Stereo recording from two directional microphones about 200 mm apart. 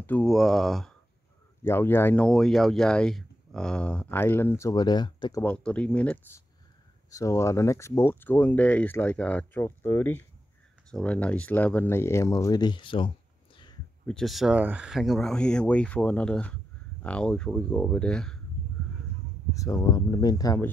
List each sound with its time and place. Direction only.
0.0 s speech: 5° left (ahead or behind)
5.4 s speech: 5° left (ahead or behind); by 13.1 s 25° left (ahead or behind)
14.0 s speech: centre (ahead or behind)
19.5 s speech: 15° left (ahead or behind)